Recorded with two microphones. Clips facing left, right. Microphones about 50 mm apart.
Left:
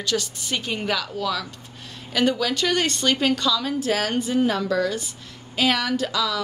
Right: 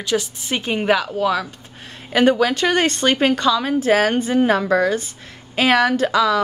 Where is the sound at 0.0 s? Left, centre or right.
Right.